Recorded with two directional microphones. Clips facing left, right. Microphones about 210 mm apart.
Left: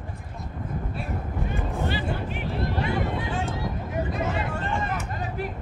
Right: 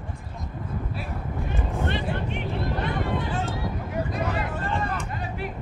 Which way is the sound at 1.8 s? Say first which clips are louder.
Right 1 dB; 5° left (ahead or behind).